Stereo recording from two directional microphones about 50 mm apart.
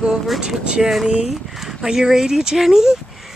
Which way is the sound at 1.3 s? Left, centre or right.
Centre.